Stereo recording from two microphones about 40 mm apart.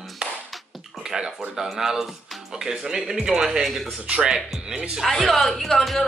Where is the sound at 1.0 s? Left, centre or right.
Centre.